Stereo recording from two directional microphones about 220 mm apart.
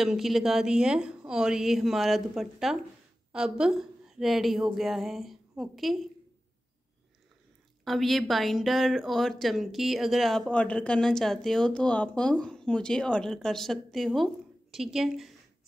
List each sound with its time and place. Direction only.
0.0 s a woman's voice: centre (ahead or behind)
7.8 s speech: centre (ahead or behind)